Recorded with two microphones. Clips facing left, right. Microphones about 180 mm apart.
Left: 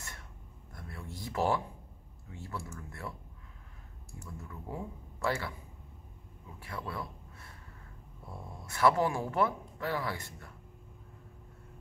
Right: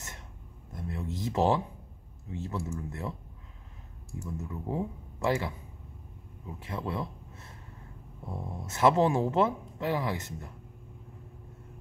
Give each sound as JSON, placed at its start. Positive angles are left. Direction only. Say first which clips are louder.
{"t": 0.7, "sound": "a sound", "louder": "right 9 dB", "side_deg": -20}
{"t": 2.2, "sound": "speech", "louder": "right 7 dB", "side_deg": -20}
{"t": 4.2, "sound": "speech", "louder": "right 8 dB", "side_deg": -20}